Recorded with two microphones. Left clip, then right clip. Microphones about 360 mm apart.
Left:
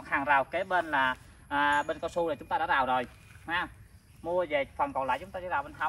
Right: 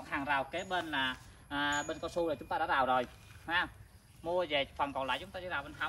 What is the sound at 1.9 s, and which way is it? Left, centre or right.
Speech, left.